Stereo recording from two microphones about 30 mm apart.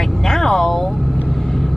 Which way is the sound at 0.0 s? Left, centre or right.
Centre.